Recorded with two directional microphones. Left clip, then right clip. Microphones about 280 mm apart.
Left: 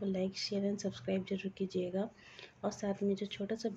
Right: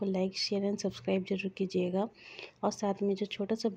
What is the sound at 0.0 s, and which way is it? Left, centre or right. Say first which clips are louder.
Speech: right 5 dB; right.